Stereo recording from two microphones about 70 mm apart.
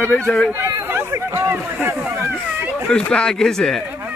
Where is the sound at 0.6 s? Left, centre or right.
Right.